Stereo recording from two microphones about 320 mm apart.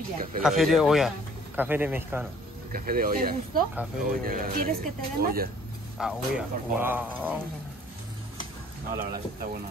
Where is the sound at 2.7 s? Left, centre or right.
Right.